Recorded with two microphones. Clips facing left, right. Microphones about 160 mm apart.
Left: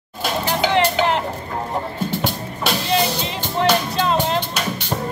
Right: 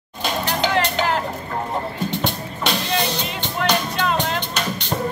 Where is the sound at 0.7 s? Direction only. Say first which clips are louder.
Left 5 dB; 25° left (ahead or behind).